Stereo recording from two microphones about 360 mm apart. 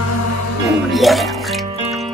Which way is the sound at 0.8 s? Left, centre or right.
Centre.